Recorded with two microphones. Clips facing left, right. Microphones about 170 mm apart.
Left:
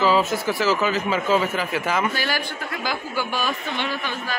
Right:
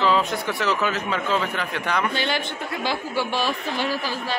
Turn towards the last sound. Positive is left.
turn(degrees=-35)  # may be behind; listen again after turning